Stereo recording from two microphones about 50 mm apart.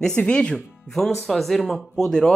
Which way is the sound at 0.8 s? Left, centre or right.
Centre.